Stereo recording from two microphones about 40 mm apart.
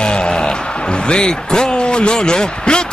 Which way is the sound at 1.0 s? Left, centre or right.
Centre.